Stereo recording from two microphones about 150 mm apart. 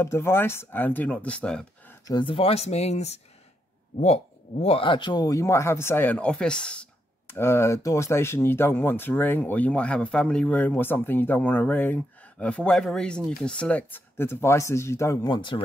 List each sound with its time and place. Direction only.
0.0 s speech: 15° left (ahead or behind)
2.0 s speech: 30° left (ahead or behind)